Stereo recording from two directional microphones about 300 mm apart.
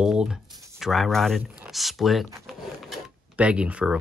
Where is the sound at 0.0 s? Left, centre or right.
Centre.